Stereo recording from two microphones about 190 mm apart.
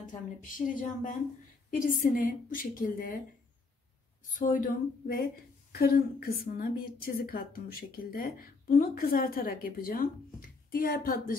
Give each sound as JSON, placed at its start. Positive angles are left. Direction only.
{"t": 0.0, "sound": "a woman's voice", "side_deg": 45}
{"t": 4.3, "sound": "a woman's voice", "side_deg": 45}